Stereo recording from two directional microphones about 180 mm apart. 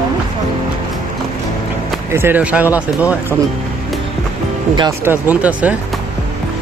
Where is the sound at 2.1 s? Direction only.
10° right (ahead or behind).